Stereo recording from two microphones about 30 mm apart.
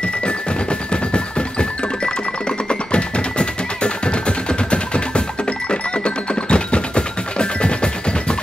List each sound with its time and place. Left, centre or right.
0.0 s music: left